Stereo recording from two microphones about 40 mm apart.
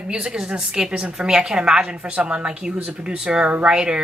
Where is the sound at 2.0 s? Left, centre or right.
Right.